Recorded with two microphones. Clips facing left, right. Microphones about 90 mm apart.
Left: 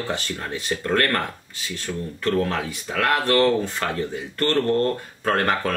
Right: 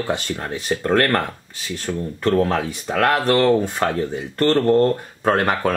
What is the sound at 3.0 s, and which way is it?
Speech, 20° right (ahead or behind).